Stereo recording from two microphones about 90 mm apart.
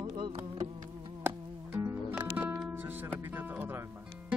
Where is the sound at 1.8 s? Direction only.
25° right (ahead or behind).